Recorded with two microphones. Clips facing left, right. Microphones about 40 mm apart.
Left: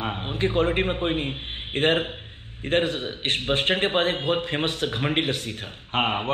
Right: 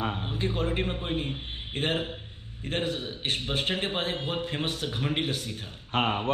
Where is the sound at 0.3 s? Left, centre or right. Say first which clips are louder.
Left 7 dB; left.